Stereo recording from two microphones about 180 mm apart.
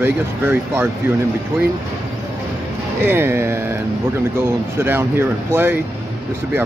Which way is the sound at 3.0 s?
10° right (ahead or behind).